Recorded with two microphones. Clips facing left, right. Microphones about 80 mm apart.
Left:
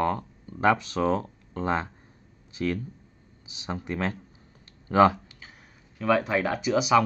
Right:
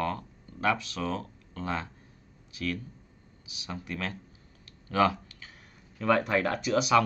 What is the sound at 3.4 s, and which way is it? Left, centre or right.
Speech, left.